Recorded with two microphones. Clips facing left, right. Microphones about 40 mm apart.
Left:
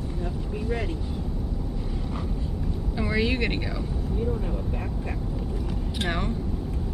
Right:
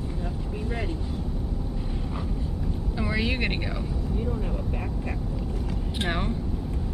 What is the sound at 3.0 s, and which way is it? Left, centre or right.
Vehicle, centre.